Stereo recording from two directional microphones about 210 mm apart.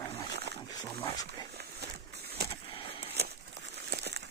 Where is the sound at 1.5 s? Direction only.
50° right (ahead or behind).